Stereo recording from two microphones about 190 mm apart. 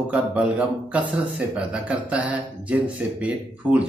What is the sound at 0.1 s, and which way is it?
A man's voice, 5° right (ahead or behind).